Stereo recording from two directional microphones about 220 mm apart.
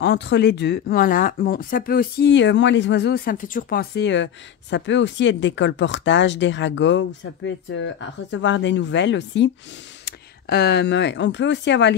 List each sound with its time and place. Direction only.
0.0 s speech: 50° left (ahead or behind)
4.0 s speech: 55° left (ahead or behind)